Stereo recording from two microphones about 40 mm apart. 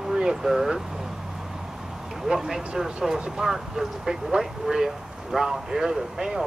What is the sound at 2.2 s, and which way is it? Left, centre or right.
Speech, centre.